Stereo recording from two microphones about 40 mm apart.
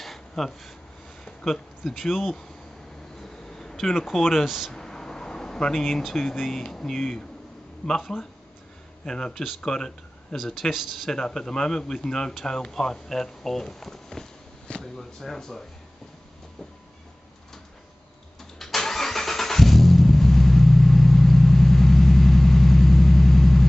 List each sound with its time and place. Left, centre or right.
0.0 s a sound: centre
1.4 s speech: centre
3.2 s a sound: centre
4.0 s speech: centre
4.5 s speech: centre
4.7 s speech: centre
9.0 s speech: centre
10.7 s speech: centre
11.1 s speech: centre
14.8 s drawer open or close: centre
18.4 s vehicle: centre